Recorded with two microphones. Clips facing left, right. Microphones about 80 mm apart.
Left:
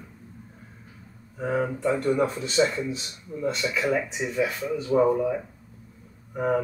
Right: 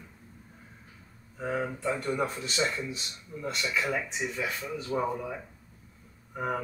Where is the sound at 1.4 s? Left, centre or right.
Centre.